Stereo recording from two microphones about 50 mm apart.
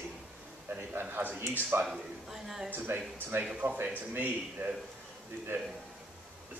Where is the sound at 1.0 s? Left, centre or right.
Right.